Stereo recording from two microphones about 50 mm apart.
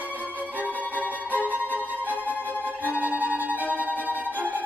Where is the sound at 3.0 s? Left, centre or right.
Right.